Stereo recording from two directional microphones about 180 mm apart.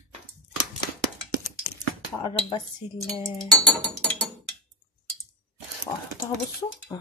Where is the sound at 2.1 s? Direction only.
25° left (ahead or behind).